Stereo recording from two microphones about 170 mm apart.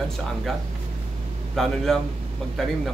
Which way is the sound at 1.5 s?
Centre (ahead or behind).